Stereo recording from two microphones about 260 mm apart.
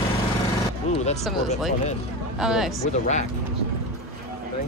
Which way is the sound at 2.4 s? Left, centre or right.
Centre.